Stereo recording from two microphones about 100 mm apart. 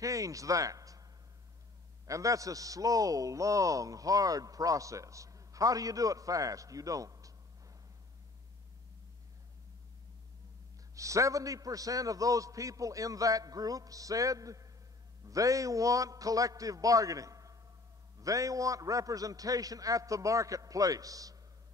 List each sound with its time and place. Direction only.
0.0 s a man's voice: 35° right (ahead or behind)
2.0 s a man's voice: 35° right (ahead or behind)
11.0 s a man's voice: 30° right (ahead or behind)